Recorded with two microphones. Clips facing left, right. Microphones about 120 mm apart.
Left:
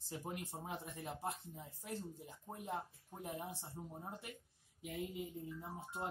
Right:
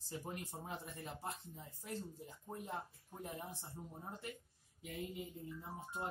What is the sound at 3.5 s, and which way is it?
Speech, 25° left (ahead or behind).